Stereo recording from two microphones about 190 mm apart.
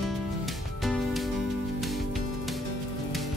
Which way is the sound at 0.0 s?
Centre (ahead or behind).